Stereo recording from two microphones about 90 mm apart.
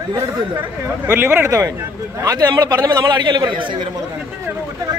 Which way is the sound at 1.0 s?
20° right (ahead or behind).